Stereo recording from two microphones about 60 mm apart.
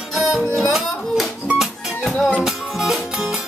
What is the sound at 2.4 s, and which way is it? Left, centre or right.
Music, centre.